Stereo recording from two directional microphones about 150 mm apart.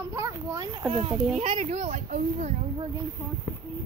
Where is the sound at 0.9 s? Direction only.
40° right (ahead or behind).